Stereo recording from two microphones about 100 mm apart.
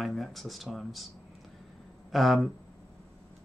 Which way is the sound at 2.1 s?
Centre (ahead or behind).